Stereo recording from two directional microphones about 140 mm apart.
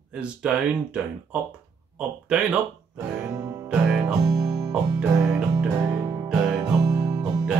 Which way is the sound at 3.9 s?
Centre (ahead or behind).